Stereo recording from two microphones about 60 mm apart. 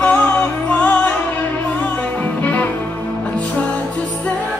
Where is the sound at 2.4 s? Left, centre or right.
Left.